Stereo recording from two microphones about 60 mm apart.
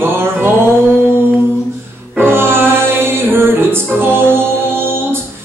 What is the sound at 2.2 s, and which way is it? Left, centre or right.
Music, right.